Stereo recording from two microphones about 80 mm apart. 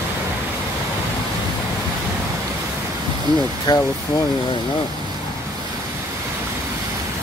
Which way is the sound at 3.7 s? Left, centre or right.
Left.